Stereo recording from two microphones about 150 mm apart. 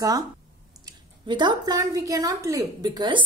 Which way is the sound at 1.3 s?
30° right (ahead or behind).